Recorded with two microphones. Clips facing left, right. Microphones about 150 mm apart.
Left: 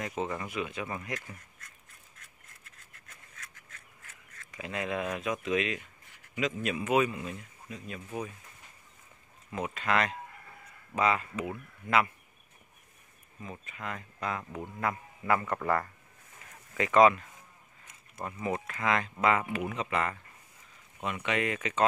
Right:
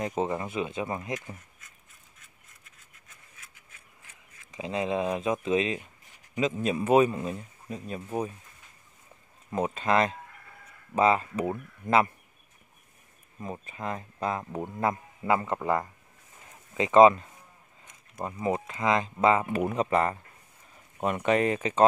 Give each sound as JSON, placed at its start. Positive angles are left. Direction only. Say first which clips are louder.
{"t": 0.0, "sound": "speech", "louder": "right 5 dB", "side_deg": -30}
{"t": 3.3, "sound": "duck", "louder": "left 3 dB", "side_deg": -10}
{"t": 4.6, "sound": "speech", "louder": "right 5 dB", "side_deg": -25}
{"t": 9.5, "sound": "speech", "louder": "right 5 dB", "side_deg": -35}
{"t": 13.4, "sound": "speech", "louder": "right 6 dB", "side_deg": -35}
{"t": 19.5, "sound": "speech", "louder": "right 6 dB", "side_deg": -40}